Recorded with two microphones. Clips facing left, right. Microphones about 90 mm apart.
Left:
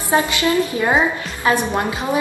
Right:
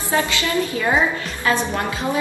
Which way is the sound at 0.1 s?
20° left (ahead or behind).